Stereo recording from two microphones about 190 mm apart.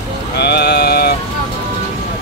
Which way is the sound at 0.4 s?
60° left (ahead or behind).